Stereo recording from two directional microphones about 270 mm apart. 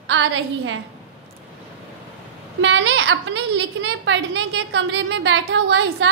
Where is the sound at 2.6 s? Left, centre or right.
Right.